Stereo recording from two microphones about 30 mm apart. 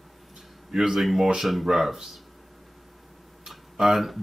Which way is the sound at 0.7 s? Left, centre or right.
Centre.